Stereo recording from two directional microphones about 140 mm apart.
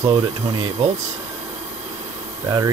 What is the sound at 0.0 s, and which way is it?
Speech, 30° right (ahead or behind).